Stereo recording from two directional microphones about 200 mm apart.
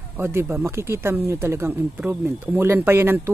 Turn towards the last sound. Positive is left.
turn(degrees=-10)  # may be behind; listen again after turning